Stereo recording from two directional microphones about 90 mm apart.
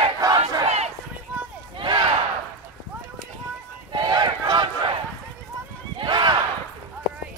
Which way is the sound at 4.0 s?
55° right (ahead or behind).